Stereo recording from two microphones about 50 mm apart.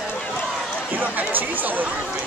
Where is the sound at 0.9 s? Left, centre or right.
Right.